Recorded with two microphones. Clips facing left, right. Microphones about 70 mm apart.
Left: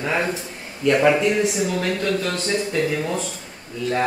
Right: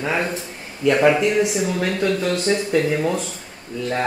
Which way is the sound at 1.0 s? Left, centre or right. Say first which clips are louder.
Right 2 dB; centre.